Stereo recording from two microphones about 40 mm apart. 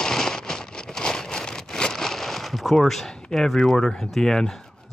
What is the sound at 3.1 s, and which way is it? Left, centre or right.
Speech, centre.